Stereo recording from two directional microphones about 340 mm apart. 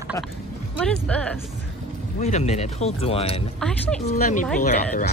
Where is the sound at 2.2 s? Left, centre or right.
Centre.